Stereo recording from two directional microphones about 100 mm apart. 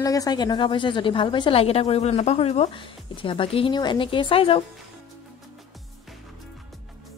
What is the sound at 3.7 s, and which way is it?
Speech, 50° left (ahead or behind).